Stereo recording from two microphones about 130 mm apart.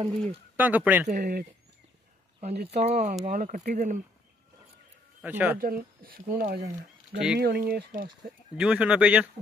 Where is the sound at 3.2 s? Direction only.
85° right.